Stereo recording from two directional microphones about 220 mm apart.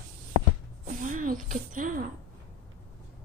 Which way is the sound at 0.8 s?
35° right (ahead or behind).